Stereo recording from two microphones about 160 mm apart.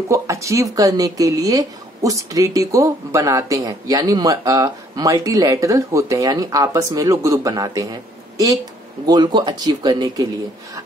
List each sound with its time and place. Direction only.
0.1 s speech: 20° right (ahead or behind)